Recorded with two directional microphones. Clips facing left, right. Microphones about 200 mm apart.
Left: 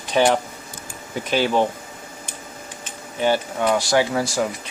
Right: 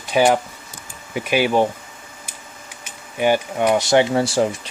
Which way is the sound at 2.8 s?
15° right (ahead or behind).